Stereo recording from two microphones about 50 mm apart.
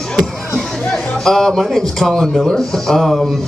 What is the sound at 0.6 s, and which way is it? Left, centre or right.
Music, centre.